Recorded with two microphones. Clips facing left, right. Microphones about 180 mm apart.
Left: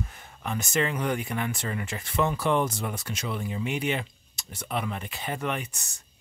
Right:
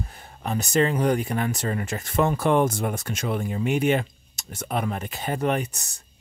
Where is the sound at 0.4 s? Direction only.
35° right (ahead or behind).